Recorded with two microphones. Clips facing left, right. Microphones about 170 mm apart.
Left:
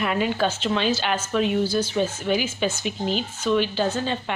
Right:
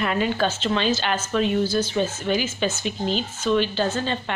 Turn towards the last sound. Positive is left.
turn(degrees=10)  # may be behind; listen again after turning